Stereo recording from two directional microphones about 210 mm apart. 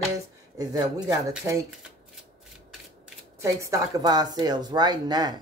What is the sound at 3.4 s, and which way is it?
Speech, 15° right (ahead or behind).